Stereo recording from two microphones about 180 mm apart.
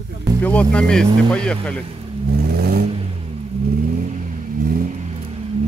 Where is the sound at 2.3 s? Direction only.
60° right (ahead or behind).